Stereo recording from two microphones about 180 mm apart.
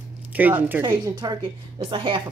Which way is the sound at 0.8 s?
20° right (ahead or behind).